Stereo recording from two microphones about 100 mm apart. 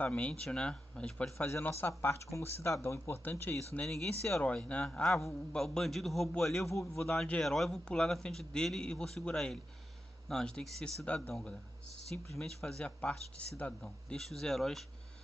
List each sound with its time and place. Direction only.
0.0 s speech: 15° left (ahead or behind)
1.4 s speech: 25° left (ahead or behind)
3.8 s speech: 5° left (ahead or behind)
6.7 s a man's voice: 30° left (ahead or behind)
7.0 s speech: 5° left (ahead or behind)